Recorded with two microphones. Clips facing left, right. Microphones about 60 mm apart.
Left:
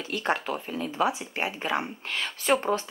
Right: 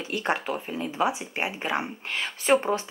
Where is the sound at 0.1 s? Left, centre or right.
Centre.